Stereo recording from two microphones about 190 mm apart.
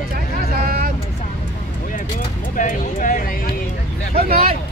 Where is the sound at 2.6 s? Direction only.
45° left (ahead or behind).